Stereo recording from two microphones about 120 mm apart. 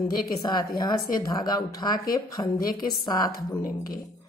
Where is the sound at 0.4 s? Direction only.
35° left (ahead or behind).